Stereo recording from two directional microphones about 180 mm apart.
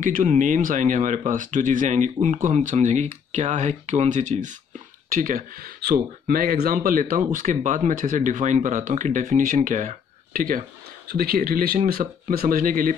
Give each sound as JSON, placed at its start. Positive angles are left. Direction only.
{"t": 0.0, "sound": "speech", "side_deg": -45}